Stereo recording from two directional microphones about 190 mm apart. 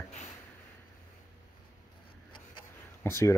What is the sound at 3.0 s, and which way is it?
Speech, 15° left (ahead or behind).